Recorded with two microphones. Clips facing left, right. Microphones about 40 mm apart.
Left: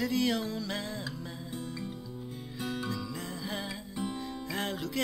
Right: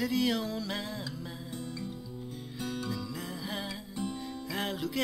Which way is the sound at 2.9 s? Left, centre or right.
Centre.